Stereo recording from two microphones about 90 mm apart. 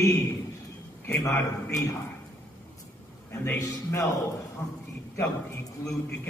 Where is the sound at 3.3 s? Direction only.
30° left (ahead or behind).